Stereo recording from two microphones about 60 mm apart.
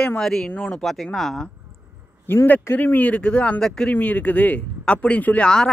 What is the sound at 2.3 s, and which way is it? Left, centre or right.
A man's voice, left.